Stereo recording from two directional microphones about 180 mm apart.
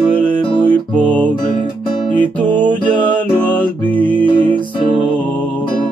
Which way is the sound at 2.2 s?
10° left (ahead or behind).